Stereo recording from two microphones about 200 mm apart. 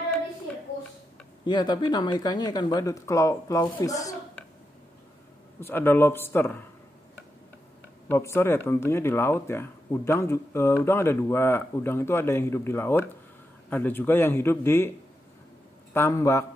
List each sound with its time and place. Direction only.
1.4 s speech: 20° left (ahead or behind)
3.8 s a sound: 15° left (ahead or behind)
5.6 s speech: 10° left (ahead or behind)
8.1 s speech: 10° left (ahead or behind)
15.9 s speech: 10° left (ahead or behind)